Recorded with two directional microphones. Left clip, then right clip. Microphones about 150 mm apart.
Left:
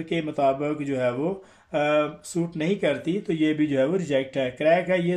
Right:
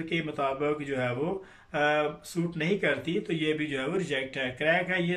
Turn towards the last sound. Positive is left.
turn(degrees=40)  # may be behind; listen again after turning